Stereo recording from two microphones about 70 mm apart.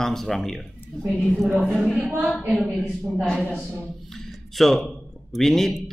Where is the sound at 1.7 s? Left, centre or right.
Centre.